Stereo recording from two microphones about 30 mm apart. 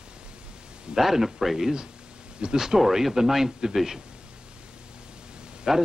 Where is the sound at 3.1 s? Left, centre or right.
Centre.